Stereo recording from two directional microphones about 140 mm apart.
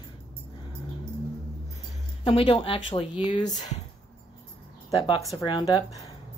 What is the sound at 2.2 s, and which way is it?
Speech, 40° left (ahead or behind).